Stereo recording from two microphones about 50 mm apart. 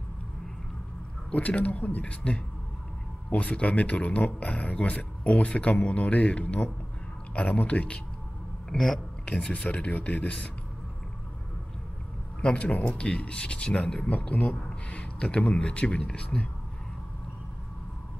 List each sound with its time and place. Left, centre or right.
1.3 s speech: left
8.6 s speech: centre
9.8 s speech: left
12.4 s speech: left